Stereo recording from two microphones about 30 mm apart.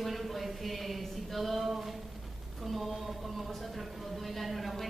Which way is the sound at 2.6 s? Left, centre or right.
Centre.